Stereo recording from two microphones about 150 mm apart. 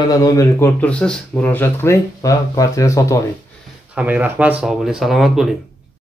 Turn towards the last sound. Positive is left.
turn(degrees=0)  # may be behind; listen again after turning